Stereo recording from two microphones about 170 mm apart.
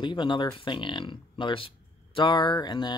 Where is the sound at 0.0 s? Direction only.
30° left (ahead or behind).